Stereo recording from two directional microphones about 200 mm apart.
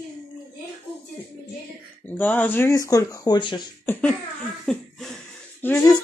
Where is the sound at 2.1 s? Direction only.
10° left (ahead or behind).